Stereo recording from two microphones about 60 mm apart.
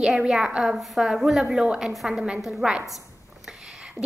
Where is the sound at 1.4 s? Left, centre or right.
Centre.